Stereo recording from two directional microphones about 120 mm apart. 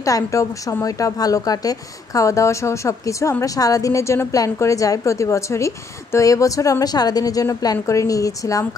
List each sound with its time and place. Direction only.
0.0 s speech: 25° left (ahead or behind)